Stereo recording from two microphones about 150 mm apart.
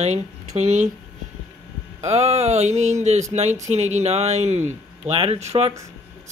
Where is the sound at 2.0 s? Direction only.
45° right (ahead or behind).